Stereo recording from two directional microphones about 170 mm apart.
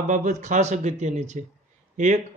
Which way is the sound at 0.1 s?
45° right (ahead or behind).